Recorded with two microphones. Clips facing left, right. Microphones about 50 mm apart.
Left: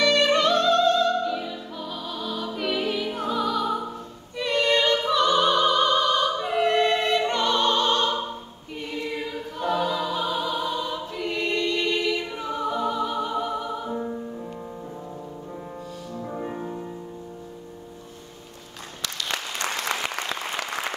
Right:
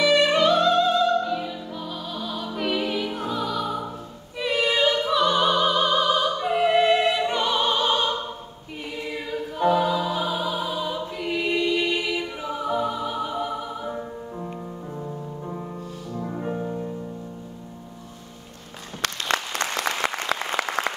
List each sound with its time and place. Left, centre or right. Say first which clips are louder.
0.0 s music: right 1 dB; centre
4.4 s opera: even; centre
8.7 s music: left 1 dB; centre
16.3 s music: right 3 dB; centre
19.3 s applause: right 5 dB; right
20.3 s applause: right 5 dB; right